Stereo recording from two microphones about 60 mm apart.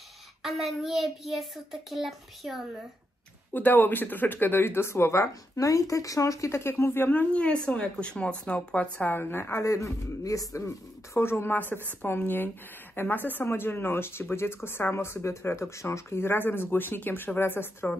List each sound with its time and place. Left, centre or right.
0.4 s a child's voice: centre
3.5 s speech: left
6.6 s speech: left
7.1 s speech: left
11.1 s speech: left